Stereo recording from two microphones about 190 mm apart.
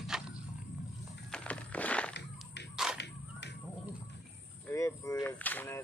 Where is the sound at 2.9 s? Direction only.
65° left (ahead or behind).